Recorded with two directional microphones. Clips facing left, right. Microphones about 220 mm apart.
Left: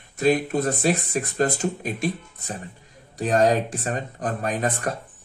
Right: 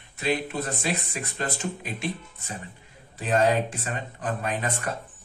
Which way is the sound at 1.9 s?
45° left (ahead or behind).